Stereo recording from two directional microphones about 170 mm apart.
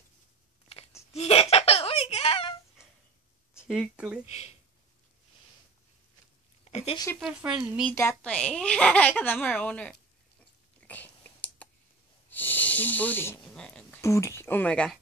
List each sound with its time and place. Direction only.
0.7 s a sound: 40° left (ahead or behind)
3.6 s speech: centre (ahead or behind)
4.3 s speech: 40° left (ahead or behind)
6.6 s a sound: 35° left (ahead or behind)
7.2 s speech: 5° right (ahead or behind)
7.9 s a woman's voice: 15° left (ahead or behind)
10.8 s a sound: 10° left (ahead or behind)
12.3 s snake: 10° left (ahead or behind)
14.0 s a woman's voice: 15° left (ahead or behind)